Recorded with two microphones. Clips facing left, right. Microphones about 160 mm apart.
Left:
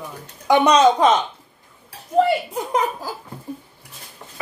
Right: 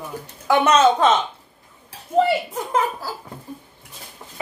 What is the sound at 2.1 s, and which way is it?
Speech, centre (ahead or behind).